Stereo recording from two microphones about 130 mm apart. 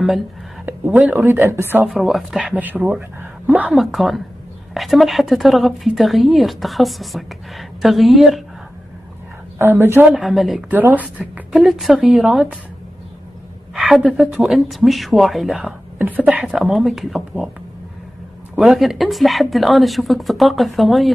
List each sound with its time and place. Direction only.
0.7 s speech: 10° right (ahead or behind)
1.9 s speech: centre (ahead or behind)
3.7 s a woman's voice: centre (ahead or behind)
9.6 s speech: 20° right (ahead or behind)
10.2 s a woman's voice: centre (ahead or behind)
10.7 s speech: 15° right (ahead or behind)
11.5 s a woman's voice: centre (ahead or behind)
13.7 s a woman's voice: 5° right (ahead or behind)
16.0 s a woman's voice: 10° right (ahead or behind)
18.6 s a woman's voice: centre (ahead or behind)